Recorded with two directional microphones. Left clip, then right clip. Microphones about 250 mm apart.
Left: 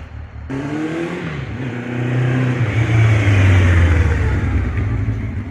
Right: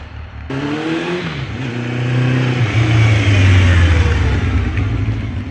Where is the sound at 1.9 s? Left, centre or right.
Centre.